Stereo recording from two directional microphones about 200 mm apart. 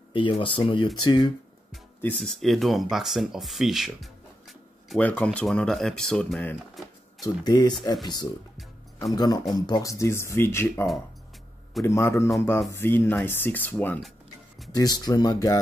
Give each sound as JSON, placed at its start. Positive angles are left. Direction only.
{"t": 0.1, "sound": "speech", "side_deg": 25}
{"t": 1.7, "sound": "speech", "side_deg": 5}
{"t": 7.2, "sound": "speech", "side_deg": 20}
{"t": 14.8, "sound": "speech", "side_deg": 20}